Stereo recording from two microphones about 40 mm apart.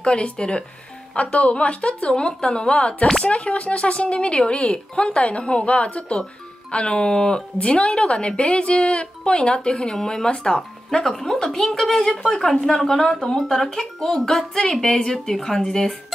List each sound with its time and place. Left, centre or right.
0.0 s speech: left
1.1 s a woman's voice: left; by 16.0 s centre